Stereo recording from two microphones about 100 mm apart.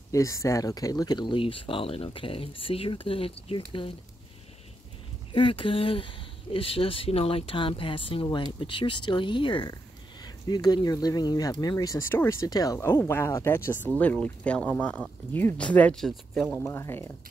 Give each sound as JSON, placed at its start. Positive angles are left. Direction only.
{"t": 0.1, "sound": "speech", "side_deg": 35}
{"t": 5.3, "sound": "speech", "side_deg": 60}
{"t": 10.2, "sound": "speech", "side_deg": 45}
{"t": 12.4, "sound": "speech", "side_deg": 35}
{"t": 13.0, "sound": "speech", "side_deg": 25}
{"t": 13.9, "sound": "speech", "side_deg": 15}
{"t": 16.5, "sound": "speech", "side_deg": 25}